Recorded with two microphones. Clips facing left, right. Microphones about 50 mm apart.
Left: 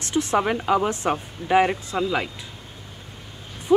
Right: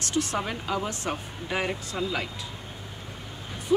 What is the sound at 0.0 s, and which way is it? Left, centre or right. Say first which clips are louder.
Speech: left 6 dB; left.